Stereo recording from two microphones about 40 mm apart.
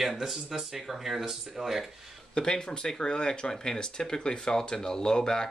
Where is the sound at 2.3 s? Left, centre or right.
Left.